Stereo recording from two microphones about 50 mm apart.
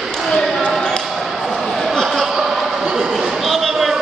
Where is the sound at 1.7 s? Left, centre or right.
Centre.